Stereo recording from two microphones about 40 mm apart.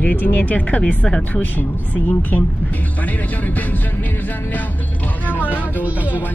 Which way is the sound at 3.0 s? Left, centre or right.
Left.